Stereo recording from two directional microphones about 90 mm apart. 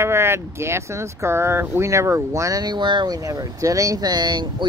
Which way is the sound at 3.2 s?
40° right (ahead or behind).